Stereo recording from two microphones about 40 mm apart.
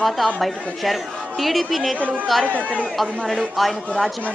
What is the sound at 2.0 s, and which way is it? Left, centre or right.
Speech, right.